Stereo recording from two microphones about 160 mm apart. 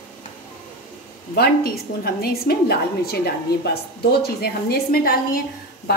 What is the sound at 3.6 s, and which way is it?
A woman's voice, 85° left.